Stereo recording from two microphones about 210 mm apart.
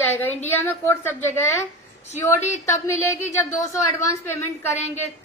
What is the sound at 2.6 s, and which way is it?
A woman's voice, 10° left (ahead or behind).